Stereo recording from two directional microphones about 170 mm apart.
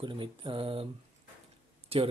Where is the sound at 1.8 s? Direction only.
35° right (ahead or behind).